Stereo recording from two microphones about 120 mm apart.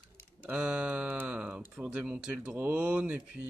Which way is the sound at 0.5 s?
10° right (ahead or behind).